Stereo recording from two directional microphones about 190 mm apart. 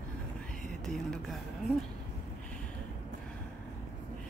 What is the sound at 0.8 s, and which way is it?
Speech, centre (ahead or behind).